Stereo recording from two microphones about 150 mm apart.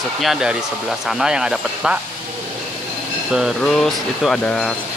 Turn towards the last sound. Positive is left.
turn(degrees=5)  # may be behind; listen again after turning